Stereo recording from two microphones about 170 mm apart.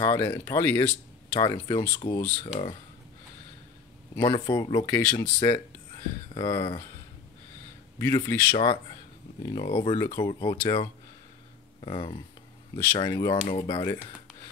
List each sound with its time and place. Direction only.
0.0 s speech: 15° left (ahead or behind)
4.2 s speech: 30° left (ahead or behind)
8.0 s speech: 15° left (ahead or behind)
9.5 s speech: 30° left (ahead or behind)